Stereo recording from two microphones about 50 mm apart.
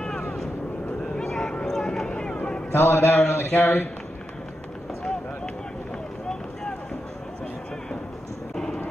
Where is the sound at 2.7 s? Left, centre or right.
Left.